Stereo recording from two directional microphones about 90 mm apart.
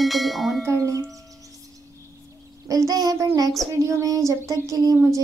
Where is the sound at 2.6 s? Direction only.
45° right (ahead or behind).